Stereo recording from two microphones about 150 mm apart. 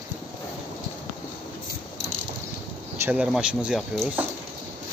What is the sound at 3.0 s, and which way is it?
Speech, 5° right (ahead or behind).